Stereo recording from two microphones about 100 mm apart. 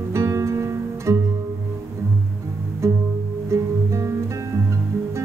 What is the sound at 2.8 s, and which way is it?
Music, 30° right (ahead or behind).